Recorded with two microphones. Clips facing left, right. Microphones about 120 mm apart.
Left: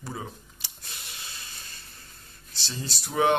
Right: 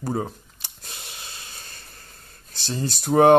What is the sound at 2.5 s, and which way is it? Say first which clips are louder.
Speech: right 9 dB; 50° right (ahead or behind).